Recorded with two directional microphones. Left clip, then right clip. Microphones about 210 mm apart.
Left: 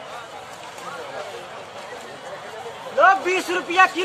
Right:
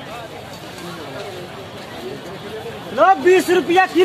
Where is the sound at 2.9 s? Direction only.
35° right (ahead or behind).